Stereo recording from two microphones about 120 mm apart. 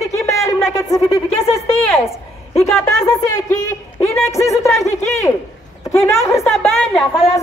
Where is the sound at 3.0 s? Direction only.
30° left (ahead or behind).